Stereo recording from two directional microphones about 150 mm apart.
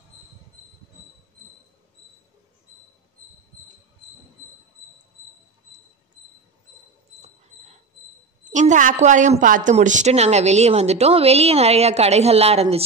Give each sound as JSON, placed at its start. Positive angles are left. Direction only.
{"t": 8.5, "sound": "a woman's voice", "side_deg": -55}